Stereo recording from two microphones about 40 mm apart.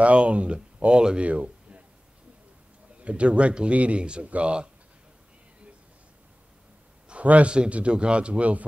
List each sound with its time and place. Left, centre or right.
0.0 s a man's voice: right
1.2 s a sound: right
3.0 s a man's voice: right
7.1 s speech: right